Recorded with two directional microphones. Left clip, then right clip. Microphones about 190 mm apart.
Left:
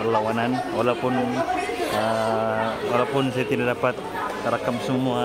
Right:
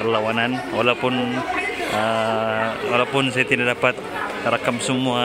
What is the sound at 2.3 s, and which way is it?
A man's voice, 10° right (ahead or behind).